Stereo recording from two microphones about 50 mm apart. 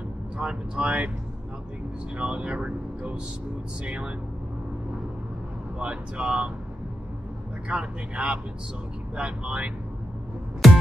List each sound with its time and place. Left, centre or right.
0.4 s speech: right
2.1 s speech: right
5.8 s speech: right
7.6 s speech: right
10.6 s music: centre